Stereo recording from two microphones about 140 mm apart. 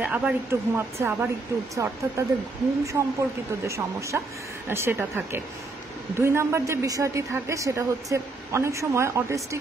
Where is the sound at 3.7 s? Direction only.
20° right (ahead or behind).